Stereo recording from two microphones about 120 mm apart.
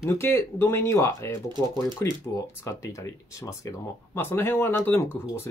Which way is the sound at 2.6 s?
25° left (ahead or behind).